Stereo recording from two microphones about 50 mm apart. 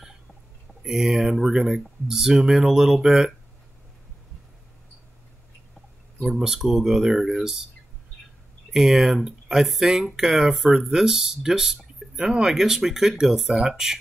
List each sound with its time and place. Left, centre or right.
0.8 s speech: centre
6.4 s speech: centre
8.7 s speech: centre